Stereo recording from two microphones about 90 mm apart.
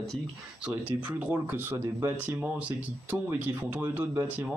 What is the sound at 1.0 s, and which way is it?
Speech, 15° right (ahead or behind).